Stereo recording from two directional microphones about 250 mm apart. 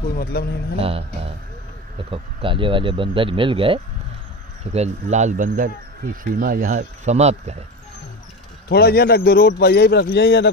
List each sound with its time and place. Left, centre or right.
0.0 s a man's voice: left
0.7 s speech: right
8.6 s a man's voice: left